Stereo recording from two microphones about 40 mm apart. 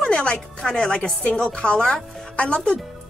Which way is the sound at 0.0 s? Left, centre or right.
Left.